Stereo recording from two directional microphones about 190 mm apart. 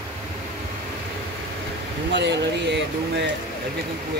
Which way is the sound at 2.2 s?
65° right (ahead or behind).